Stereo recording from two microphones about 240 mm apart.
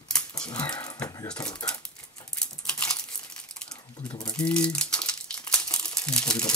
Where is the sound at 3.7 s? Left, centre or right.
Centre.